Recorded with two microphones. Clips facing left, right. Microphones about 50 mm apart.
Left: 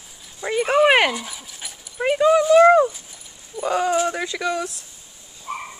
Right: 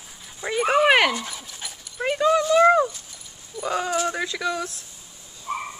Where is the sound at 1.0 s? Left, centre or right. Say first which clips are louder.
Left 1 dB; centre.